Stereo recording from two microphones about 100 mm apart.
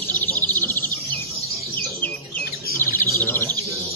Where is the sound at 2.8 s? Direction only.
25° left (ahead or behind).